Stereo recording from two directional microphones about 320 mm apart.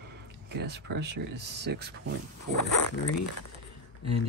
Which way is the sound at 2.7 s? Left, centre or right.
Left.